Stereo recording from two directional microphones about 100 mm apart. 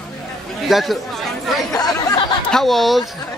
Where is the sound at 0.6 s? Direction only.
Centre (ahead or behind).